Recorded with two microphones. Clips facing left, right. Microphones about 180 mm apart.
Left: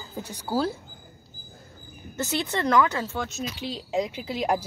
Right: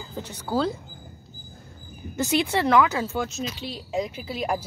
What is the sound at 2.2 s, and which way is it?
Speech, 10° right (ahead or behind).